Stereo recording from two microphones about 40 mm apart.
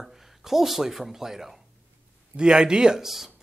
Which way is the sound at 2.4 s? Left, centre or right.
Right.